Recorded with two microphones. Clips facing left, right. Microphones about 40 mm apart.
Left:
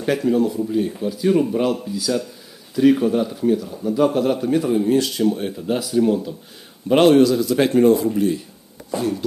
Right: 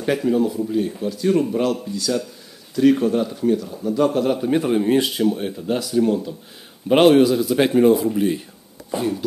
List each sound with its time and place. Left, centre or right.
0.0 s speech: centre
4.5 s speech: right
5.0 s speech: centre
5.3 s speech: centre
6.9 s speech: centre
8.9 s speech: centre